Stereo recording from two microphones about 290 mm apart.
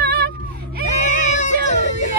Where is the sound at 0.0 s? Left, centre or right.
Right.